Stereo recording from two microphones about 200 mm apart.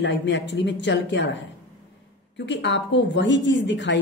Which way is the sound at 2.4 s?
60° left (ahead or behind).